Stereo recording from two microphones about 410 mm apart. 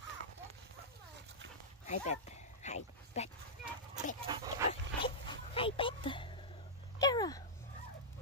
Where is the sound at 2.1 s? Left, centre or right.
Centre.